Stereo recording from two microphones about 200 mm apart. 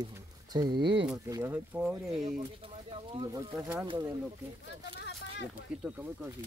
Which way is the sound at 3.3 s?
15° right (ahead or behind).